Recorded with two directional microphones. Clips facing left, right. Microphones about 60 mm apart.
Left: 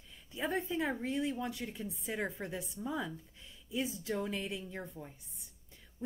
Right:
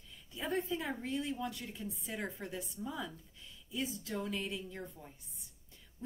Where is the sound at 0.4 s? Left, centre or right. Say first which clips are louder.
Left 2 dB; left.